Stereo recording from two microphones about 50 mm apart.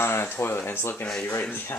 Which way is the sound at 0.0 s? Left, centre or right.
Left.